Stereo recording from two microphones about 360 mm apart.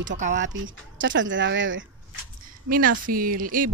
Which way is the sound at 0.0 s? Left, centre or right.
Right.